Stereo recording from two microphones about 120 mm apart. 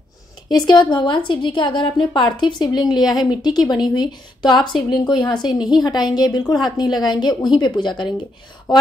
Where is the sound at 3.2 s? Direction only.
35° left (ahead or behind).